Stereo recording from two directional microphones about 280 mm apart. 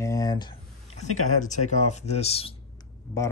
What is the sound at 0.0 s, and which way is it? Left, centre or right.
Speech, centre.